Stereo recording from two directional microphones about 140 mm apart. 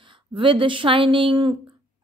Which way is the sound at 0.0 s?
35° right (ahead or behind).